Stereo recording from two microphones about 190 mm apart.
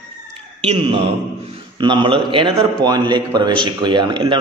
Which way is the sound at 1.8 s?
25° right (ahead or behind).